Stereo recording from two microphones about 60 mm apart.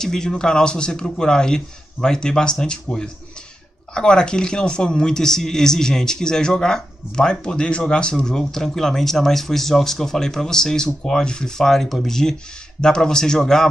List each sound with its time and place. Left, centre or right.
0.0 s a man's voice: centre